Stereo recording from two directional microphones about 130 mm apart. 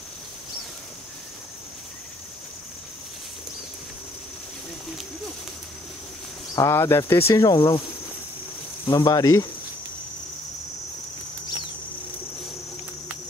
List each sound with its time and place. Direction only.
6.5 s speech: 20° left (ahead or behind)
8.8 s speech: 30° left (ahead or behind)